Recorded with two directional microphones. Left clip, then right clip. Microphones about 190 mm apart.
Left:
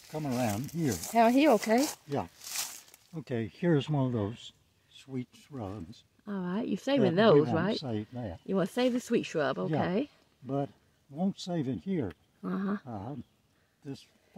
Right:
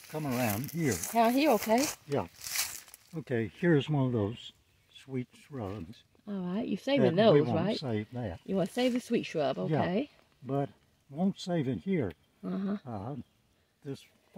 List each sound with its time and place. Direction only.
0.1 s speech: 10° right (ahead or behind)
0.9 s speech: 10° left (ahead or behind)
2.0 s speech: 15° right (ahead or behind)
2.5 s a sound: 10° right (ahead or behind)
4.1 s speech: 20° right (ahead or behind)
4.9 s speech: 35° right (ahead or behind)
6.2 s speech: centre (ahead or behind)
7.7 s speech: 40° right (ahead or behind)
8.5 s speech: centre (ahead or behind)
10.4 s speech: 30° right (ahead or behind)
12.4 s a sound: centre (ahead or behind)
12.8 s speech: 35° right (ahead or behind)